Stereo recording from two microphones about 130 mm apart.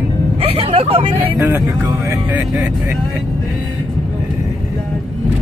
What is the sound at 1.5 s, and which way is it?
Speech, 25° right (ahead or behind).